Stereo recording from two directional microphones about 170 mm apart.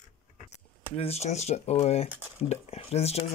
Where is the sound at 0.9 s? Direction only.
35° left (ahead or behind).